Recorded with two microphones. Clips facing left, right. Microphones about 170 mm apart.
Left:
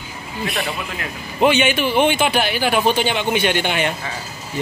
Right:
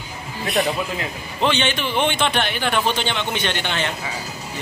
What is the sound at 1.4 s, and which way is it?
A man's voice, 10° left (ahead or behind).